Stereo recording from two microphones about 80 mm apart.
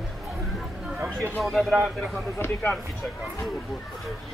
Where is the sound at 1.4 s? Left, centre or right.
Centre.